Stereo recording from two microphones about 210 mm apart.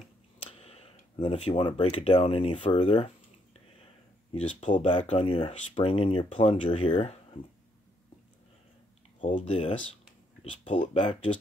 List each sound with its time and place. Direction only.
0.5 s speech: 30° left (ahead or behind)
4.3 s speech: 30° left (ahead or behind)
9.2 s speech: 30° left (ahead or behind)